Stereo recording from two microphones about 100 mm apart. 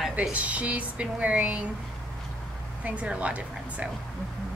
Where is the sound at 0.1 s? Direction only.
15° right (ahead or behind).